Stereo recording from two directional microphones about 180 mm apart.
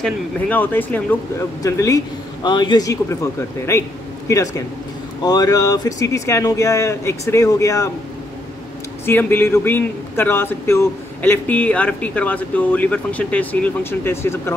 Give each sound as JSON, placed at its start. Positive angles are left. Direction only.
{"t": 0.0, "sound": "a man's voice", "side_deg": 10}
{"t": 9.0, "sound": "a man's voice", "side_deg": 15}